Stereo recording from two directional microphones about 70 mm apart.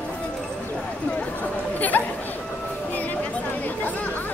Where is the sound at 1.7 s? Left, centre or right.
Left.